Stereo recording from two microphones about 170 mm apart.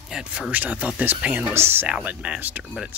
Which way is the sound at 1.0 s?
10° right (ahead or behind).